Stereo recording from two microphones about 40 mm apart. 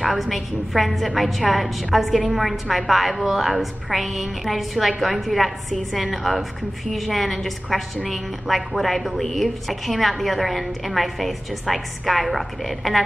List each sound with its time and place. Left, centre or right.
0.0 s a woman's voice: centre